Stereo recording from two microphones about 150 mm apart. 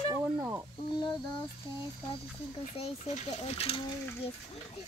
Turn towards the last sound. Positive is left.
turn(degrees=40)  # may be behind; listen again after turning